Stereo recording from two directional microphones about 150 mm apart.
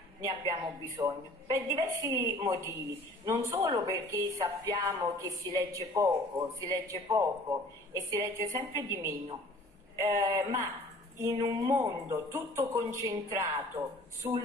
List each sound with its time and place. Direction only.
0.2 s a woman's voice: 25° right (ahead or behind)